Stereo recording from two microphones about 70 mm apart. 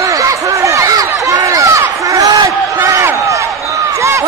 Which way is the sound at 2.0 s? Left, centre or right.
Right.